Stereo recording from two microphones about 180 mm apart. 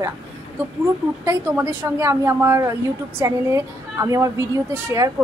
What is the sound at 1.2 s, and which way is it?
A woman's voice, 10° right (ahead or behind).